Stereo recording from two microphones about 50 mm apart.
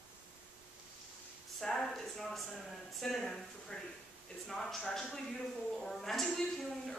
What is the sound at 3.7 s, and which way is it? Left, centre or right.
Speech, centre.